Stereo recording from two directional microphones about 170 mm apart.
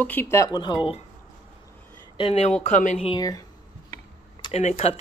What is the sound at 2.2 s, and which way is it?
Speech, 35° left (ahead or behind).